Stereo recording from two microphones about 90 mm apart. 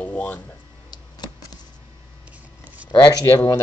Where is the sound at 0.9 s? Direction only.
55° left (ahead or behind).